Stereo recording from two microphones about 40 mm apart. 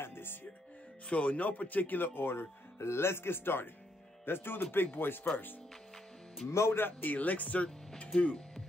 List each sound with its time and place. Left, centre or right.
0.0 s music: left
1.0 s speech: left
1.5 s speech: left
6.4 s speech: left
7.0 s speech: left
8.1 s speech: left